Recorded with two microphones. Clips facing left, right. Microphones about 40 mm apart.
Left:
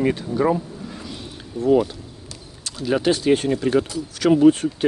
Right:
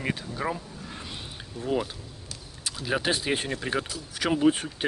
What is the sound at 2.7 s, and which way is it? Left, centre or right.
Speech, centre.